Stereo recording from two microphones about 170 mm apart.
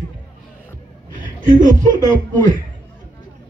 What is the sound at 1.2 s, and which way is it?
A man's voice, 50° right (ahead or behind).